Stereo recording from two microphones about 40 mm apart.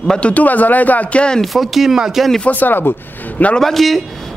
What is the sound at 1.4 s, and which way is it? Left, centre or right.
Speech, centre.